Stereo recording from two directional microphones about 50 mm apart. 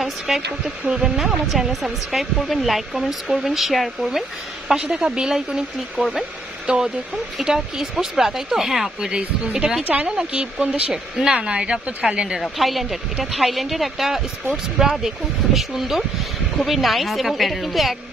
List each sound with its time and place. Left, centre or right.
0.3 s speech: centre
4.9 s speech: centre
9.1 s a woman's voice: centre
12.4 s speech: centre